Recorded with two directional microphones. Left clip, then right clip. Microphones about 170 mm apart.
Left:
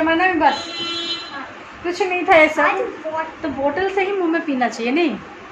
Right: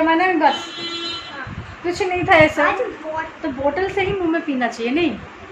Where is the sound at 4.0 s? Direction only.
15° left (ahead or behind).